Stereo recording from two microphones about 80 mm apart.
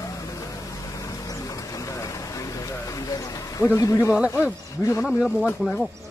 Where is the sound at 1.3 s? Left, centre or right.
Left.